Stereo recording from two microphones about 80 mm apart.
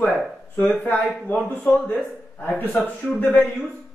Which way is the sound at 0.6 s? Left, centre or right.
Centre.